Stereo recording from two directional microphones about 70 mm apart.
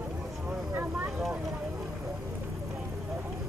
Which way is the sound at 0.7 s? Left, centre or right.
Right.